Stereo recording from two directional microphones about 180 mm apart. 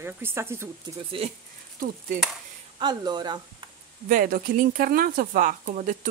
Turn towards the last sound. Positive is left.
turn(degrees=-45)  # may be behind; listen again after turning